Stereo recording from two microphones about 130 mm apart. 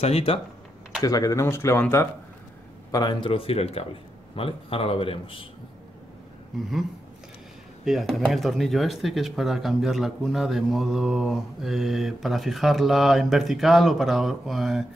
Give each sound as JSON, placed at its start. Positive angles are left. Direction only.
{"t": 0.0, "sound": "a man's voice", "side_deg": 45}
{"t": 1.0, "sound": "speech", "side_deg": 25}
{"t": 2.9, "sound": "a man's voice", "side_deg": 30}
{"t": 7.8, "sound": "speech", "side_deg": 0}